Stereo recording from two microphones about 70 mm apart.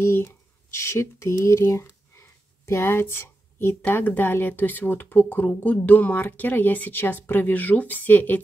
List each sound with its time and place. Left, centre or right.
0.0 s speech: left